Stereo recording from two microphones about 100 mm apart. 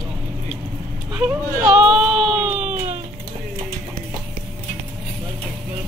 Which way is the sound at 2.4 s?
15° right (ahead or behind).